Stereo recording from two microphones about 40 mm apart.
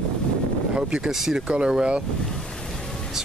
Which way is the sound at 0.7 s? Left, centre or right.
Right.